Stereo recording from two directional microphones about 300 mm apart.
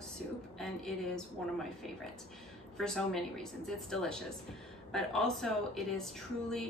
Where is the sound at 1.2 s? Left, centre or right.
Centre.